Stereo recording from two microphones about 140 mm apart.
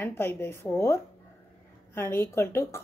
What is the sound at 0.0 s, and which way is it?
Speech, 15° left (ahead or behind).